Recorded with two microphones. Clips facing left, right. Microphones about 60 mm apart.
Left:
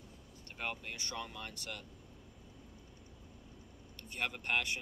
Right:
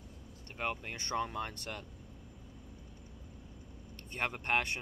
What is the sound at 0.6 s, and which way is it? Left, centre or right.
Speech, right.